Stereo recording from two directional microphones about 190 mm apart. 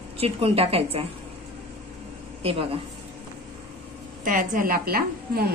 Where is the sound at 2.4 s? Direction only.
30° right (ahead or behind).